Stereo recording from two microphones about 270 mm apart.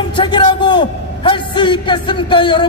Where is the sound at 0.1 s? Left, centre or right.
Centre.